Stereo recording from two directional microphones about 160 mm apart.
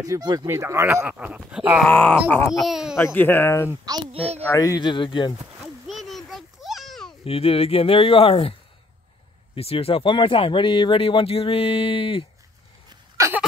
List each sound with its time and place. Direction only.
0.0 s speech: 25° right (ahead or behind); by 1.9 s 5° right (ahead or behind)
1.9 s speech: 10° left (ahead or behind)
2.6 s speech: 5° right (ahead or behind)
3.2 s speech: 15° left (ahead or behind)
4.1 s a child's voice: 35° right (ahead or behind)
4.5 s speech: 20° left (ahead or behind)
5.6 s a sound: centre (ahead or behind)
7.2 s speech: 35° left (ahead or behind)
9.6 s speech: 35° left (ahead or behind)